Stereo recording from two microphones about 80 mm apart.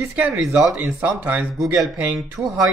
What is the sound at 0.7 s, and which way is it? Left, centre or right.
Speech, right.